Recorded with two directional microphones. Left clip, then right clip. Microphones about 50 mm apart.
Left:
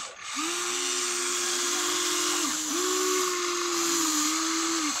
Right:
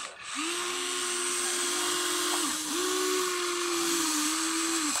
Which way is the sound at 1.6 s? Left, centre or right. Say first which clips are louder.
Left 2 dB; left.